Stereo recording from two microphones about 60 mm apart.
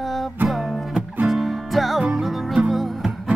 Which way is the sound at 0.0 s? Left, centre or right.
Centre.